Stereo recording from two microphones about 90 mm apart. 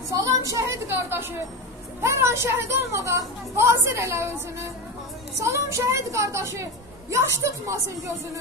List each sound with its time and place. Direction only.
0.1 s a woman's voice: 40° right (ahead or behind)